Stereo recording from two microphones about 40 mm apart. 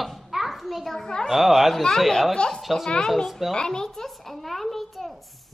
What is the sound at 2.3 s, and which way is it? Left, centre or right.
A woman's voice, centre.